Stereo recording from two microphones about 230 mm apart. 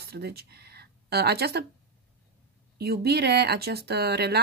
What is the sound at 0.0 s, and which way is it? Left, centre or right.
Speech, right.